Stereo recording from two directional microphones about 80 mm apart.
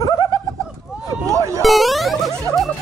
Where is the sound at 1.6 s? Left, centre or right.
Centre.